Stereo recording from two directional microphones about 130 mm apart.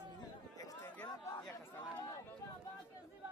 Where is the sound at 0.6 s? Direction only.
25° left (ahead or behind).